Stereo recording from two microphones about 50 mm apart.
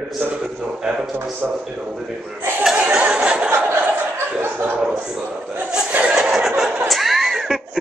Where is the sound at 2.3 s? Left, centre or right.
Right.